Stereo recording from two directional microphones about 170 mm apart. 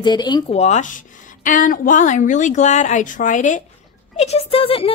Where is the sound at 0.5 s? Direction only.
40° left (ahead or behind).